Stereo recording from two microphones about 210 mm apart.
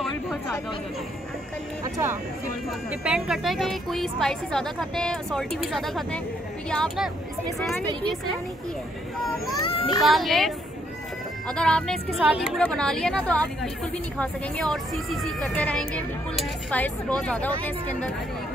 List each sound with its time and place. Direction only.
2.9 s a woman's voice: 5° right (ahead or behind)
9.7 s a child's voice: 25° left (ahead or behind)
10.0 s a woman's voice: centre (ahead or behind)